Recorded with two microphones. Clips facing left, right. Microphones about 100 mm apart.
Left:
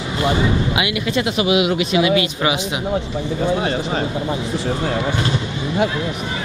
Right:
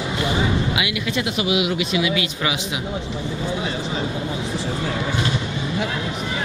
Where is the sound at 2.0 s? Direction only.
50° left (ahead or behind).